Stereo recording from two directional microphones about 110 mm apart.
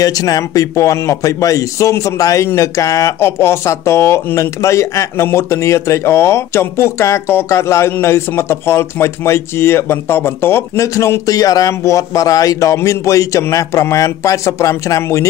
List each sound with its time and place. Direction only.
0.0 s speech: 35° left (ahead or behind)